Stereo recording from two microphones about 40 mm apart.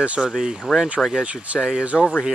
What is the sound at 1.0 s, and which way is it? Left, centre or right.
Speech, centre.